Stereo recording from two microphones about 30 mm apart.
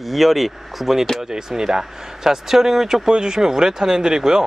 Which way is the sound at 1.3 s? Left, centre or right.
Right.